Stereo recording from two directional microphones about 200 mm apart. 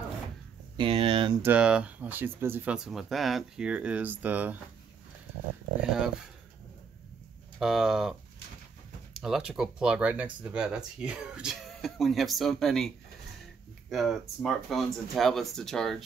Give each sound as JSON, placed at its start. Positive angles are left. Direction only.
{"t": 0.7, "sound": "speech", "side_deg": -30}
{"t": 1.4, "sound": "speech", "side_deg": -5}
{"t": 5.8, "sound": "speech", "side_deg": -5}
{"t": 7.5, "sound": "speech", "side_deg": 0}